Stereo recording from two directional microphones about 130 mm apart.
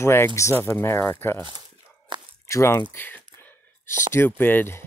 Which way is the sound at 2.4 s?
20° left (ahead or behind).